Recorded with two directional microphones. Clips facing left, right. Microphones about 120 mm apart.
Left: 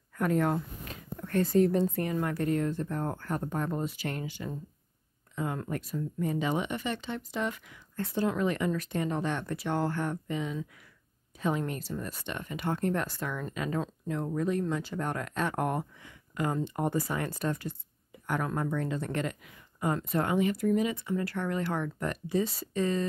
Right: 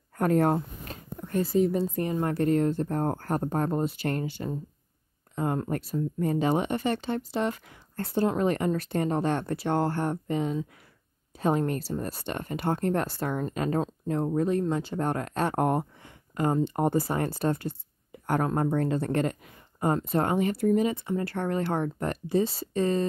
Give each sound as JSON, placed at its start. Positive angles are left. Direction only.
{"t": 0.2, "sound": "speech", "side_deg": -40}
{"t": 1.4, "sound": "speech", "side_deg": -5}
{"t": 2.0, "sound": "speech", "side_deg": -25}